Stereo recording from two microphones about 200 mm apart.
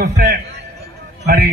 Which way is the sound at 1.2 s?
55° right (ahead or behind).